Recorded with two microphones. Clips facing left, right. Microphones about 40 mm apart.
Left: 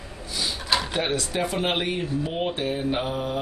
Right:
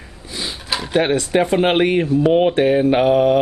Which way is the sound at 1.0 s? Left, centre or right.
Right.